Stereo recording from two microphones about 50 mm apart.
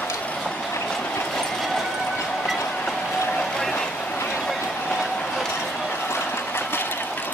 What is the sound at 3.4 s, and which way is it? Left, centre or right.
Vehicle, centre.